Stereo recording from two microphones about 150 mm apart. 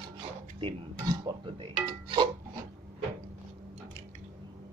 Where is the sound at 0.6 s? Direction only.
30° right (ahead or behind).